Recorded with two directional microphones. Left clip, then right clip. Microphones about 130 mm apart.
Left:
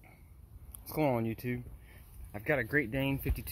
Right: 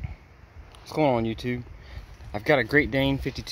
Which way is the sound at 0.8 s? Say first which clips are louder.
Right 8 dB; centre (ahead or behind).